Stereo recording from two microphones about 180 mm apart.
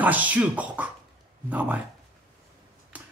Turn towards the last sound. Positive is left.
turn(degrees=-10)  # may be behind; listen again after turning